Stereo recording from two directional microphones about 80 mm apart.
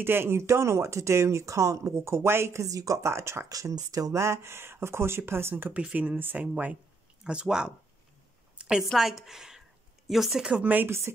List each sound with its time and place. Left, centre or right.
0.0 s speech: right
3.4 s speech: right; by 7.7 s centre
8.5 s a sound: centre
8.8 s a woman's voice: centre; by 11.0 s right